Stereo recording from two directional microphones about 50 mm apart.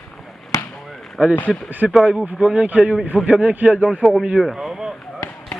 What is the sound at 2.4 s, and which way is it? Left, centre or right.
Speech, right.